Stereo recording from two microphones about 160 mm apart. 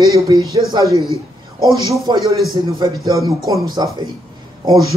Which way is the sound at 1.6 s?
25° right (ahead or behind).